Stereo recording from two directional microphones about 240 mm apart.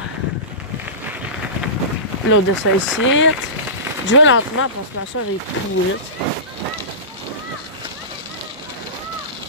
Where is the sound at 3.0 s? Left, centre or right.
Left.